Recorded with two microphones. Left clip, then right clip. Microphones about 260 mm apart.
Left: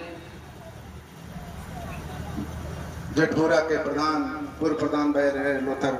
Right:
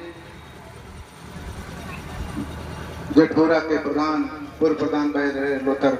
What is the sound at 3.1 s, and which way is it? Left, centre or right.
A man's voice, left.